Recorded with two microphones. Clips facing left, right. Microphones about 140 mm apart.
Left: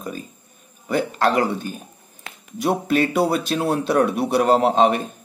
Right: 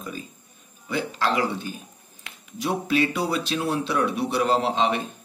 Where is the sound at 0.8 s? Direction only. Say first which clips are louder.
Left 6 dB; 50° left (ahead or behind).